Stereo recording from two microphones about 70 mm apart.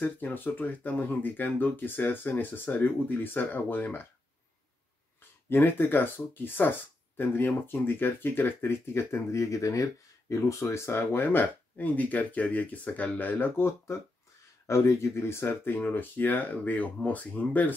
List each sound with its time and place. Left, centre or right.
0.0 s speech: left
5.5 s speech: left